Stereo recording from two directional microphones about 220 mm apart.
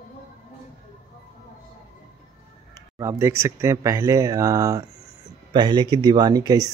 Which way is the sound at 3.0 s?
10° right (ahead or behind).